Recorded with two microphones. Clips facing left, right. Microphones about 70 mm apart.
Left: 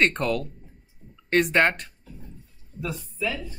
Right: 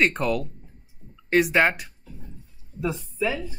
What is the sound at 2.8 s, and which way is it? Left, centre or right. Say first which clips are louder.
Speech: right 4 dB; right.